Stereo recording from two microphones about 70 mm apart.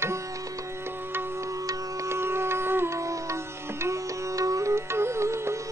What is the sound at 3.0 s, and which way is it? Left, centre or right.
Music, right.